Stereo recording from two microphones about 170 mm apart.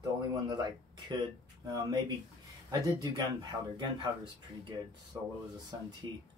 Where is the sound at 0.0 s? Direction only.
25° right (ahead or behind).